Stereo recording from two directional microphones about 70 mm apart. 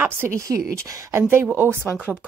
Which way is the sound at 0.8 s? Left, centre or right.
Right.